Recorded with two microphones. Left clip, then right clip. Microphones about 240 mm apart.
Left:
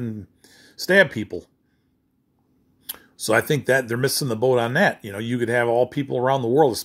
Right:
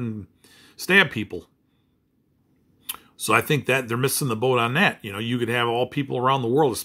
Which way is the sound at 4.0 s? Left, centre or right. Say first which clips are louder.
Left 2 dB; right.